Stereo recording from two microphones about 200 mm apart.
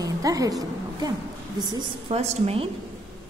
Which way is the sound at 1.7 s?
30° right (ahead or behind).